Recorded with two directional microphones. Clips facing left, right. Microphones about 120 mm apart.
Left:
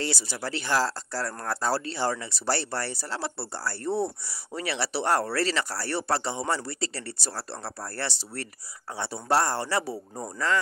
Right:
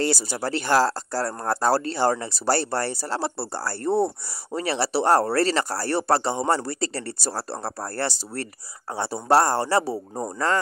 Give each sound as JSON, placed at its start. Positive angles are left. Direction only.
{"t": 0.0, "sound": "speech", "side_deg": -40}